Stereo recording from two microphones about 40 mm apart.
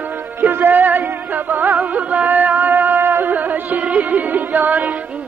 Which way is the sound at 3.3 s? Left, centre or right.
Right.